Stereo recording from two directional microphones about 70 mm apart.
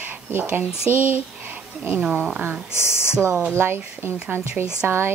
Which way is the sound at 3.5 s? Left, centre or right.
Right.